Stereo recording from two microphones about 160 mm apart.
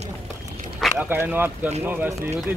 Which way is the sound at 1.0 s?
15° right (ahead or behind).